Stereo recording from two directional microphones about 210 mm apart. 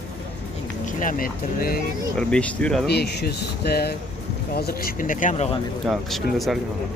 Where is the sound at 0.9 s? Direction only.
40° left (ahead or behind).